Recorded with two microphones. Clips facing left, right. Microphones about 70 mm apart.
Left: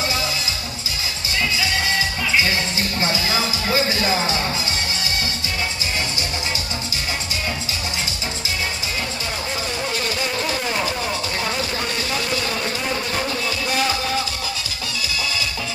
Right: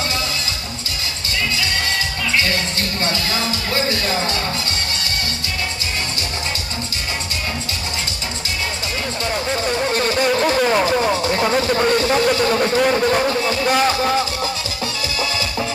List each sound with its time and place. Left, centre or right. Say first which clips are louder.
2.3 s music: even; centre
9.8 s music: right 7 dB; right
10.9 s speech: right 7 dB; right
13.1 s music: right 6 dB; right